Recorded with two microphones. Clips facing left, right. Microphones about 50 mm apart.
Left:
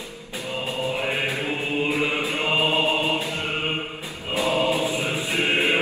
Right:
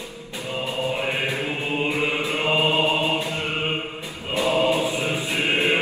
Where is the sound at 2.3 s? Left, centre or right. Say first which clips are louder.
Right 1 dB; right.